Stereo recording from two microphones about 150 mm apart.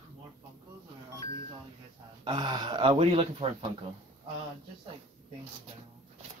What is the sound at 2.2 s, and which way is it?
Speech, 30° right (ahead or behind).